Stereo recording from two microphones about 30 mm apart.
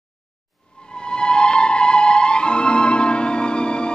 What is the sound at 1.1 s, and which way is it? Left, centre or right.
Music, left.